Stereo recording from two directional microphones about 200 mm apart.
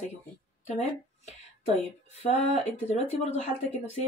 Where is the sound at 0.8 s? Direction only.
35° left (ahead or behind).